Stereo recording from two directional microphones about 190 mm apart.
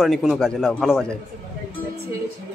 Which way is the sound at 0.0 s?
Centre (ahead or behind).